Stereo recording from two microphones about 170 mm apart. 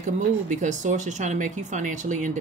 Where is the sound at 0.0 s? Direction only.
45° right (ahead or behind).